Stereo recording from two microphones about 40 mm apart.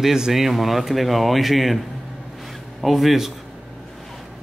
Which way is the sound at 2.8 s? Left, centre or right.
Centre.